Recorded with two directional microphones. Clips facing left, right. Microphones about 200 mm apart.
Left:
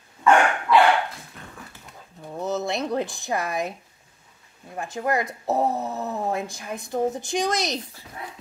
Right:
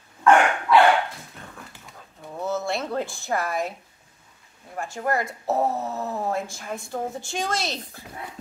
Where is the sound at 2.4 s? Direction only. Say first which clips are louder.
Left 1 dB; 20° left (ahead or behind).